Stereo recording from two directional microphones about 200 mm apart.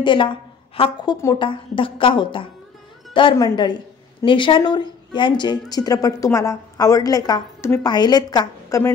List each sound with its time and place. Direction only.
0.0 s a woman's voice: 25° left (ahead or behind)